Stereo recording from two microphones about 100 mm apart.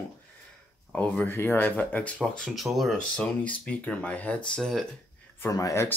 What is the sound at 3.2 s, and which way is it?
Speech, 15° left (ahead or behind).